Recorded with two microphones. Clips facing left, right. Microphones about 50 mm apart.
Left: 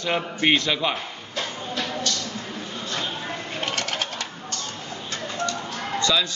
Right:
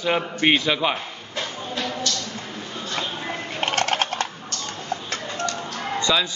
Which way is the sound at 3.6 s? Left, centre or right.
Right.